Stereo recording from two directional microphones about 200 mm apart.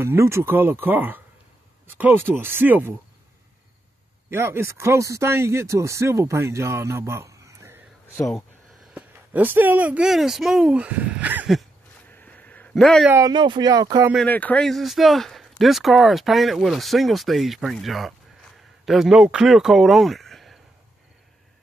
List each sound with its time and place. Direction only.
0.0 s speech: 15° right (ahead or behind)
4.3 s speech: 15° right (ahead or behind)
8.9 s speech: 10° right (ahead or behind)
12.1 s a sound: 10° left (ahead or behind)
13.1 s speech: 20° right (ahead or behind)
14.1 s speech: 5° left (ahead or behind)